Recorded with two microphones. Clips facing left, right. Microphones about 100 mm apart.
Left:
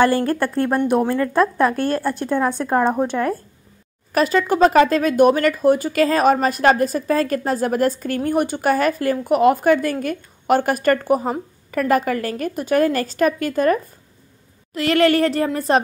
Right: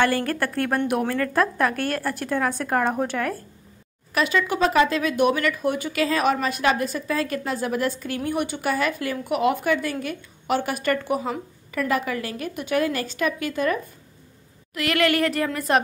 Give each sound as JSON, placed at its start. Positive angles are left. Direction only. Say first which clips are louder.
{"t": 0.0, "sound": "a woman's voice", "louder": "left 5 dB", "side_deg": 25}
{"t": 4.1, "sound": "speech", "louder": "left 5 dB", "side_deg": 40}
{"t": 14.7, "sound": "a woman's voice", "louder": "left 6 dB", "side_deg": 30}